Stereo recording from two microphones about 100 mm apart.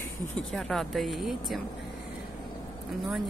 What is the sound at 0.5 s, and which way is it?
Speech, 5° left (ahead or behind).